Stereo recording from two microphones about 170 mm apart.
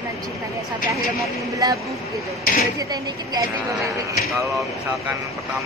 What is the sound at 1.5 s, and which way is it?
A woman's voice, 20° right (ahead or behind).